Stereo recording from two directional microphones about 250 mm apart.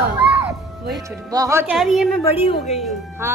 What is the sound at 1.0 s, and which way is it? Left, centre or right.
Speech, centre.